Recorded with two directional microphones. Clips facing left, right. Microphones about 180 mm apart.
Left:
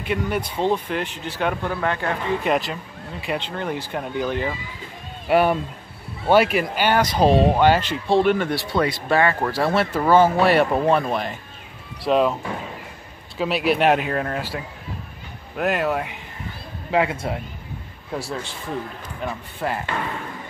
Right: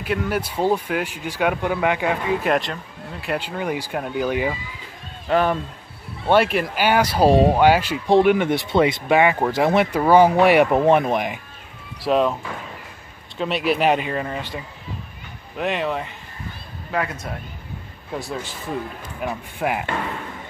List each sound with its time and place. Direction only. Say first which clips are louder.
0.0 s speech: right 1 dB; 5° right (ahead or behind)
2.5 s speech: right 1 dB; centre (ahead or behind)
5.3 s speech: left 2 dB; 10° left (ahead or behind); by 11.3 s 15° right (ahead or behind)
12.0 s speech: even; centre (ahead or behind)
13.4 s speech: left 1 dB; centre (ahead or behind)
16.9 s a man's voice: left 5 dB; 25° left (ahead or behind)
19.2 s speech: right 2 dB; 10° right (ahead or behind)